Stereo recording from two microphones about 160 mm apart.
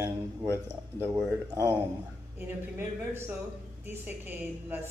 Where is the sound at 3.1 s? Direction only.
15° right (ahead or behind).